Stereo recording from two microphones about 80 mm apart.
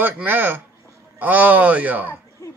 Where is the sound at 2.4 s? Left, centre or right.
Left.